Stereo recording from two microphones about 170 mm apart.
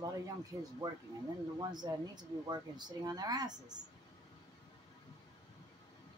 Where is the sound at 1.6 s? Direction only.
25° right (ahead or behind).